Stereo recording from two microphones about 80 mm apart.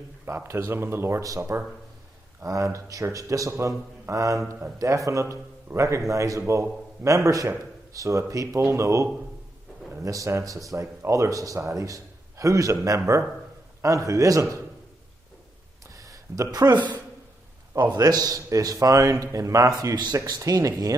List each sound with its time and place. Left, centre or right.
0.2 s speech: right
2.4 s a man's voice: right
16.0 s a sound: right
17.7 s a man's voice: right